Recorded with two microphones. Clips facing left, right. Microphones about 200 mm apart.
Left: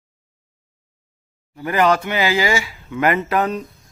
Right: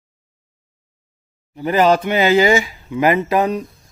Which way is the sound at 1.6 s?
20° right (ahead or behind).